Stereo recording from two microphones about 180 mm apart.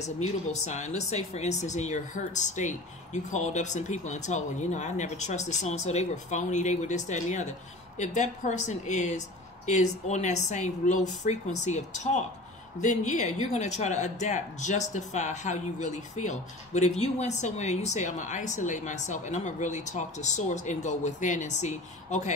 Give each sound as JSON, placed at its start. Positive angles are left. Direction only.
{"t": 0.2, "sound": "speech", "side_deg": 40}